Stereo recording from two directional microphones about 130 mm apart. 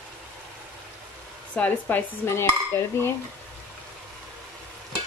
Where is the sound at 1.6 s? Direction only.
10° left (ahead or behind).